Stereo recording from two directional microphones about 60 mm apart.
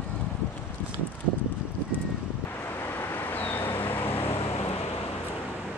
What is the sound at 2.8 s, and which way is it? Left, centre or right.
Vehicle, left.